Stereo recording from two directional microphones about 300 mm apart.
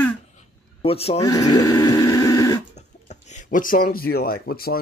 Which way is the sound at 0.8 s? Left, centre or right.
Centre.